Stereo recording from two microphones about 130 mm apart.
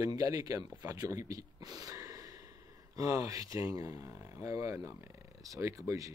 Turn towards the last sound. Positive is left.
turn(degrees=-25)  # may be behind; listen again after turning